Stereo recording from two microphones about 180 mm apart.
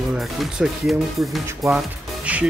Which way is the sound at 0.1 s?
Centre (ahead or behind).